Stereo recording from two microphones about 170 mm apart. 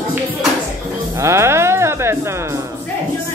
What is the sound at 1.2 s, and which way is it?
Music, 15° right (ahead or behind).